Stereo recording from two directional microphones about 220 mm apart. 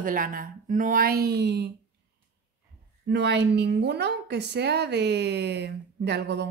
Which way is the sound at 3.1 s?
50° right (ahead or behind).